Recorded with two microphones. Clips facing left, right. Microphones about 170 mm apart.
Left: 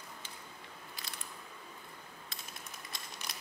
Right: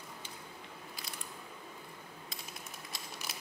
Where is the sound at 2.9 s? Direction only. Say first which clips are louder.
Right 2 dB; 5° right (ahead or behind).